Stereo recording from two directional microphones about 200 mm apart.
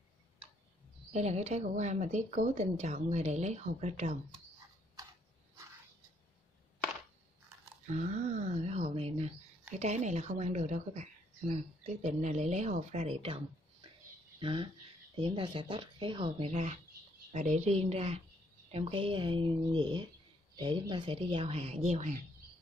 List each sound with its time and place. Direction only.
1.1 s a woman's voice: 35° right (ahead or behind)
8.6 s a sound: 30° right (ahead or behind)
9.8 s a woman's voice: 35° right (ahead or behind)